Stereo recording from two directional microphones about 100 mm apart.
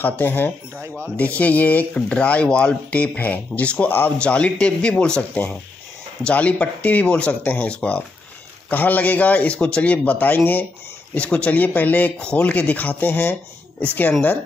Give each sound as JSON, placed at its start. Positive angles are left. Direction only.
{"t": 0.0, "sound": "speech", "side_deg": 20}